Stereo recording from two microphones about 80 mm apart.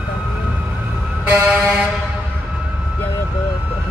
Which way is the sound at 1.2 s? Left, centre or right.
Centre.